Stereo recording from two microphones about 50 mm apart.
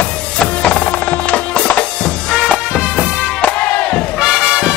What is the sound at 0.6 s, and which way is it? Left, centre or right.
Music, left.